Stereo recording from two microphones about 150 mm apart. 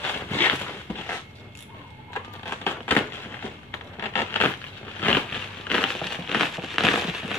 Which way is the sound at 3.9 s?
15° left (ahead or behind).